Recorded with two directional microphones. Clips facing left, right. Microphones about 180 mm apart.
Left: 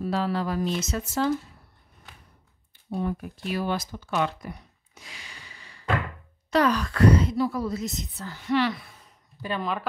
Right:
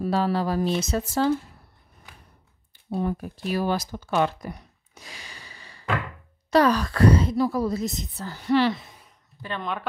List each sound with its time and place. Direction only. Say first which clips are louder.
0.0 s speech: right 3 dB; 35° right (ahead or behind)
2.9 s speech: right 2 dB; 40° right (ahead or behind)
9.4 s speech: left 2 dB; 5° left (ahead or behind)